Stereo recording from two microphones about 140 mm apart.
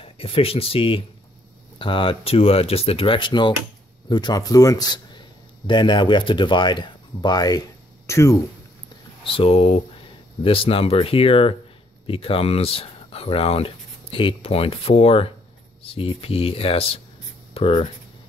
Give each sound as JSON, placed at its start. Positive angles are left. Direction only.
{"t": 0.0, "sound": "a man's voice", "side_deg": 45}
{"t": 9.2, "sound": "speech", "side_deg": 40}